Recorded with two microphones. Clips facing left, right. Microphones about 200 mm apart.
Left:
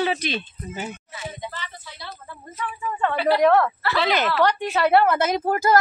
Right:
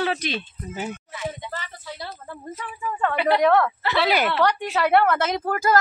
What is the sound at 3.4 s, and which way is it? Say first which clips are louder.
Speech: left 2 dB; 5° left (ahead or behind).